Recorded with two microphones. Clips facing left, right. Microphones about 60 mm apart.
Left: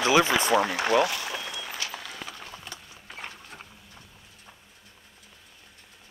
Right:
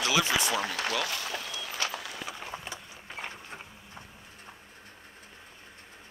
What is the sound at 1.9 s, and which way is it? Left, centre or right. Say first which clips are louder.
Clip-clop: right 1 dB; centre.